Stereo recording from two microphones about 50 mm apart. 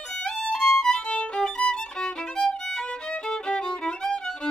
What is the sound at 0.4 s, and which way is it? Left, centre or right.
Violin, centre.